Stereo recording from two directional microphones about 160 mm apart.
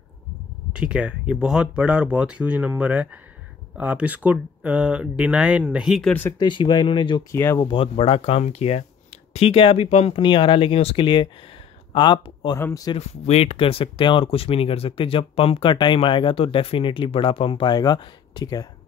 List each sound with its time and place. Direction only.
0.7 s speech: 5° right (ahead or behind)
6.3 s speech: 30° left (ahead or behind)
7.3 s speech: 15° left (ahead or behind)
7.6 s speech: 35° left (ahead or behind); by 12.9 s 20° left (ahead or behind)
12.9 s speech: 40° left (ahead or behind); by 18.7 s 25° left (ahead or behind)